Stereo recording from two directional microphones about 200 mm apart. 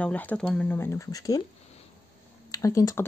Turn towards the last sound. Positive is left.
turn(degrees=15)  # may be behind; listen again after turning